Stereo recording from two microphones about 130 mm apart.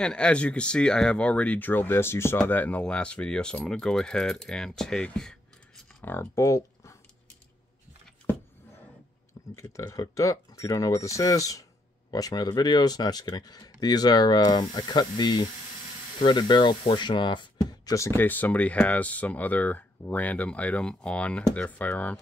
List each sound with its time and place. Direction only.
0.0 s speech: 5° left (ahead or behind)
6.0 s speech: 20° left (ahead or behind)
9.6 s speech: 25° left (ahead or behind)
17.9 s speech: 20° left (ahead or behind)